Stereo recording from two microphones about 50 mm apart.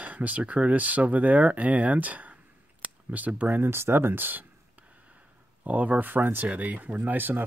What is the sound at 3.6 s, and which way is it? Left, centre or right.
Speech, right.